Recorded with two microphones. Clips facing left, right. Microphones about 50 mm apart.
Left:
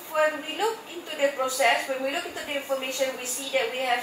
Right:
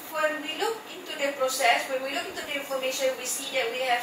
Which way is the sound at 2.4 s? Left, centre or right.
Centre.